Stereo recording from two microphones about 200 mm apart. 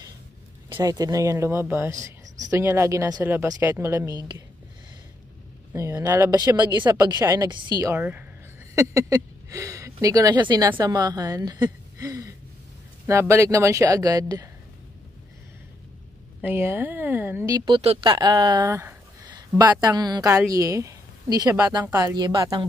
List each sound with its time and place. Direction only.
0.7 s speech: 20° right (ahead or behind)
5.7 s a woman's voice: 15° right (ahead or behind)
16.3 s a woman's voice: 10° right (ahead or behind)